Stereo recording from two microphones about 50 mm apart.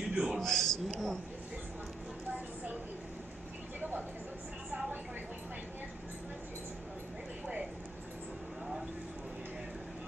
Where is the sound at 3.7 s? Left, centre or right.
Right.